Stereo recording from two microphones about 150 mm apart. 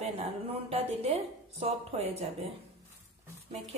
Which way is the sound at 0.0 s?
40° right (ahead or behind).